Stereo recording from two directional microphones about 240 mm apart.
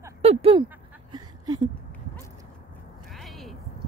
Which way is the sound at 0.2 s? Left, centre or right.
Right.